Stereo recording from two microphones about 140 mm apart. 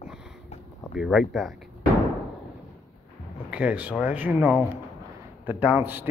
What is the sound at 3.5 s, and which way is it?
Speech, 10° right (ahead or behind).